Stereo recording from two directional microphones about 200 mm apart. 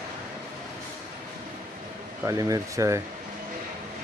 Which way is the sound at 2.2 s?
15° right (ahead or behind).